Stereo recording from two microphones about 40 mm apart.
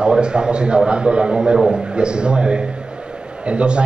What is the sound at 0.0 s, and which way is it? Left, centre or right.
A man's voice, right.